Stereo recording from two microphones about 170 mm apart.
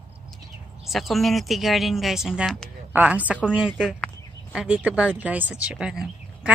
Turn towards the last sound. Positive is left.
turn(degrees=-5)  # may be behind; listen again after turning